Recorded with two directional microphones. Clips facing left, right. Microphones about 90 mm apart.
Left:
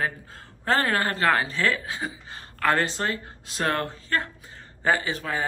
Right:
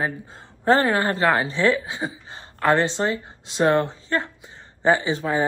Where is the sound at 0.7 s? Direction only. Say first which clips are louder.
Right 5 dB; 25° right (ahead or behind).